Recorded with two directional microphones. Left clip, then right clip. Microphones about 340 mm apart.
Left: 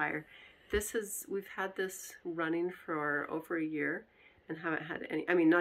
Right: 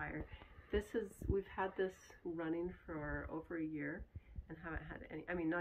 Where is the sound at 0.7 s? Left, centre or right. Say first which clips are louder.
Left 6 dB; centre.